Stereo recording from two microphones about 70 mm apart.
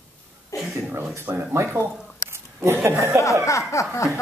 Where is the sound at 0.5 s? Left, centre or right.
Left.